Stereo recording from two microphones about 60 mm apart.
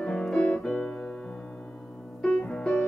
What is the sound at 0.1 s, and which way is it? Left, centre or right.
Piano, centre.